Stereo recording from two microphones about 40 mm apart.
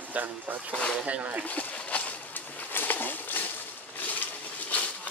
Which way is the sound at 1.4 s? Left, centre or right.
Left.